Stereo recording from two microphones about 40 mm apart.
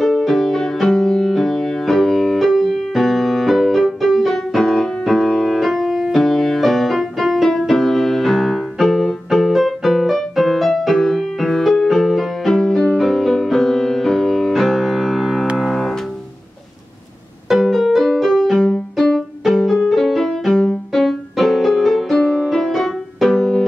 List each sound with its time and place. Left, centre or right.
0.2 s music: centre
9.5 s music: centre
17.6 s music: centre
22.2 s music: left
22.5 s music: centre